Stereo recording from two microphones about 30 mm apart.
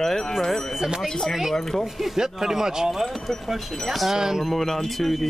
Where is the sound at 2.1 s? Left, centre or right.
Centre.